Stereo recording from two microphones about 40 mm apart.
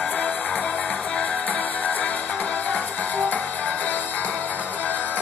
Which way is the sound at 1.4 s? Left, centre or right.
Left.